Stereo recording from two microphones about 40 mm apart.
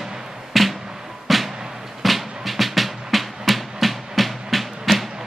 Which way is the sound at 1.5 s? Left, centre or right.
Centre.